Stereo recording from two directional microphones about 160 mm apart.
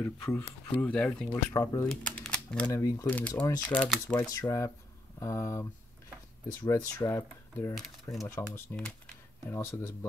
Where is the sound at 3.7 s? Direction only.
Centre (ahead or behind).